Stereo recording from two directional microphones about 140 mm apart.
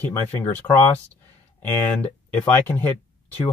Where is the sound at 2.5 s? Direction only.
15° left (ahead or behind).